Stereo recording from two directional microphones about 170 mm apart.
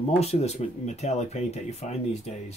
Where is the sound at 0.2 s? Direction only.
40° left (ahead or behind).